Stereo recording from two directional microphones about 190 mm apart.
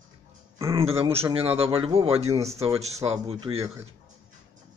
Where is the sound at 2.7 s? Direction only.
35° right (ahead or behind).